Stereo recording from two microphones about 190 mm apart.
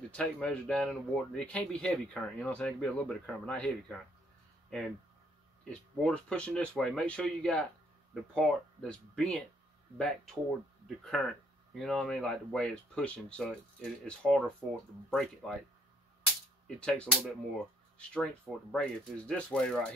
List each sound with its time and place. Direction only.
0.1 s speech: 5° left (ahead or behind)
16.6 s speech: 5° left (ahead or behind)